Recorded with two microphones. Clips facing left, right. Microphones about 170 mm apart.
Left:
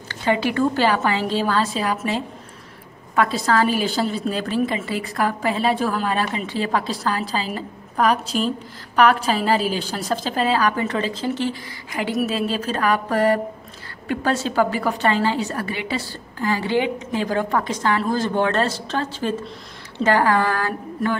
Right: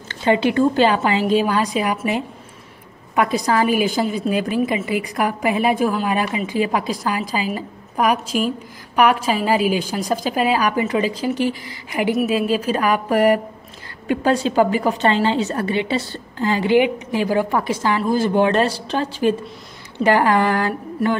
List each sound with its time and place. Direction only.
0.2 s a woman's voice: 20° right (ahead or behind)